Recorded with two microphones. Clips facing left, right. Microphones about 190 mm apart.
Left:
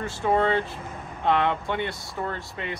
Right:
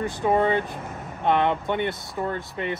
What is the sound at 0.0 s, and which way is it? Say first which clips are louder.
Speech: right 2 dB; 15° right (ahead or behind).